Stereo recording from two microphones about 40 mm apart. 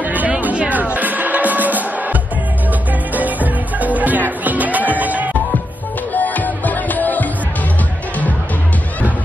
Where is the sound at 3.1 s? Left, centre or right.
Right.